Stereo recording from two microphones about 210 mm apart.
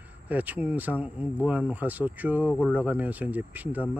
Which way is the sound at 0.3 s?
10° right (ahead or behind).